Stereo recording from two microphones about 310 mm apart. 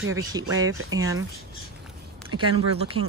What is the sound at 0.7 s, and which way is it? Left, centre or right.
Speech, right.